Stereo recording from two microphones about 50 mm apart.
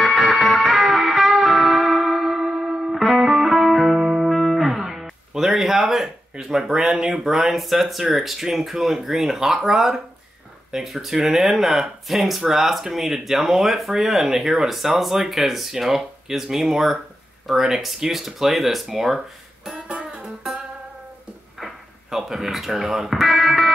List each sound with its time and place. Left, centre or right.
0.0 s music: centre
6.7 s speech: centre
19.9 s music: centre
21.5 s speech: centre